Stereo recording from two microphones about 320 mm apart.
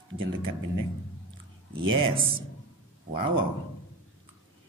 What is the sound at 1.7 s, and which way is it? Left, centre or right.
Speech, centre.